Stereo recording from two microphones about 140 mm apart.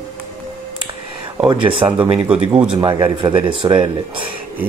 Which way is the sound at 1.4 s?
35° right (ahead or behind).